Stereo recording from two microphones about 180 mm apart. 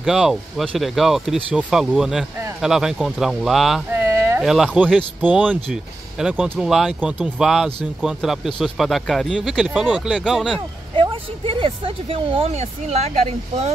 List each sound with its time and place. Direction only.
0.0 s speech: centre (ahead or behind)
3.9 s a sound: 15° right (ahead or behind)
4.4 s speech: centre (ahead or behind)
11.0 s speech: 30° right (ahead or behind)